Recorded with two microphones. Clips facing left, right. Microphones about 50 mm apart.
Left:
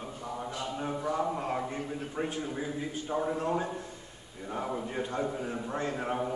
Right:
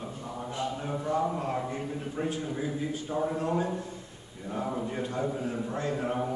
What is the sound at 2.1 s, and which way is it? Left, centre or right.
Speech, centre.